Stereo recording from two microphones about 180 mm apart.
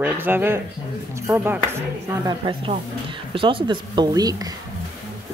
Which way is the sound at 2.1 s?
25° right (ahead or behind).